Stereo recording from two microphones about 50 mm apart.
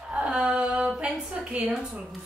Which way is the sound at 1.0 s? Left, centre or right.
Right.